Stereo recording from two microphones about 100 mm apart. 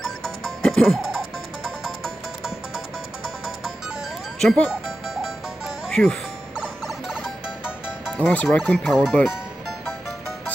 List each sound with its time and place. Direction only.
0.2 s music: 5° left (ahead or behind)
4.4 s music: 5° left (ahead or behind)
6.9 s music: 5° right (ahead or behind)
8.2 s speech: 15° left (ahead or behind)
8.7 s speech: centre (ahead or behind)